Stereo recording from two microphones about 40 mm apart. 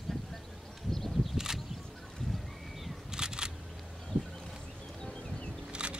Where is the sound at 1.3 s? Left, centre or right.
Centre.